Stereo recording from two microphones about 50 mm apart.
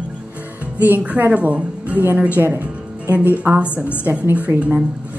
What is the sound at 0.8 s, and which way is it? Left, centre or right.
Speech, right.